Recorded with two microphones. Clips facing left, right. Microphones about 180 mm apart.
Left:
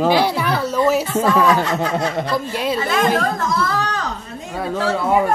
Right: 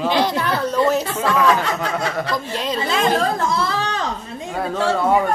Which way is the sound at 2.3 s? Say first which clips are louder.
Left 3 dB; 10° left (ahead or behind).